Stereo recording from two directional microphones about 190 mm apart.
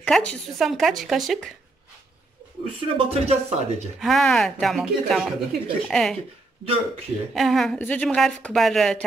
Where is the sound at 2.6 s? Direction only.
30° right (ahead or behind).